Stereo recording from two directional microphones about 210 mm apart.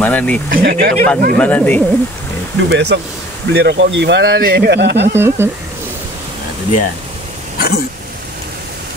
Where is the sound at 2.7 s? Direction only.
55° right (ahead or behind).